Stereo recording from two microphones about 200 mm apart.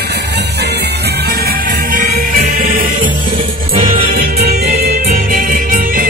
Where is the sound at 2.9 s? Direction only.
25° right (ahead or behind).